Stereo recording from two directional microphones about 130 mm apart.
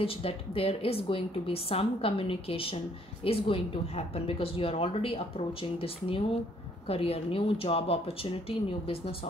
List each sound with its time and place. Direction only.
0.0 s a woman's voice: 45° left (ahead or behind)